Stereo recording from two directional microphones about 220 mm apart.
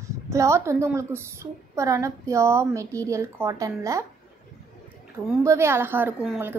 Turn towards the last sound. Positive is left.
turn(degrees=-5)  # may be behind; listen again after turning